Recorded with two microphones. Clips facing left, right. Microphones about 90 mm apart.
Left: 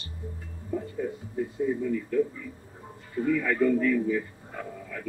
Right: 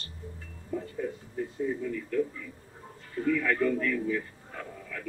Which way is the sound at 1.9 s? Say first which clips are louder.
Left 4 dB; 20° left (ahead or behind).